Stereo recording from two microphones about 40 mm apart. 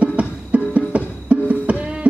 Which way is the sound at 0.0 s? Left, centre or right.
Right.